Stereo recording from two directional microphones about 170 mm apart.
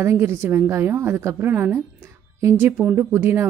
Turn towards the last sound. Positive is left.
turn(degrees=-15)  # may be behind; listen again after turning